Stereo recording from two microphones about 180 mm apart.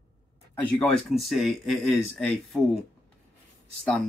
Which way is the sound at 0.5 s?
5° left (ahead or behind).